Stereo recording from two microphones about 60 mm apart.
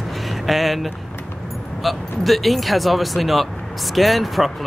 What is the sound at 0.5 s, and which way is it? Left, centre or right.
Speech, centre.